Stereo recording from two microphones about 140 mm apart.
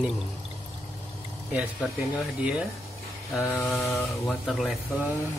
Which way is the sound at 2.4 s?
10° right (ahead or behind).